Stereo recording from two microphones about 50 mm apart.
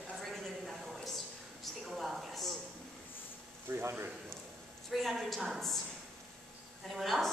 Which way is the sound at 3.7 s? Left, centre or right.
Right.